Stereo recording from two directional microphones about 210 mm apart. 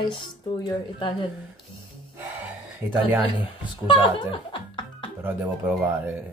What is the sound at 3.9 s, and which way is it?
Music, 25° left (ahead or behind).